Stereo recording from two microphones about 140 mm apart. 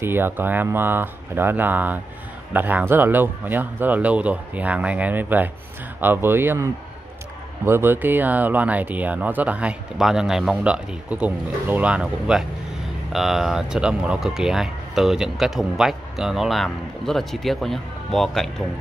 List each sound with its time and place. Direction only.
0.0 s speech: 15° right (ahead or behind); by 18.5 s centre (ahead or behind)